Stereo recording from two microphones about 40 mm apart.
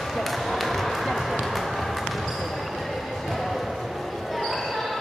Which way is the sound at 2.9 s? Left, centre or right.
Centre.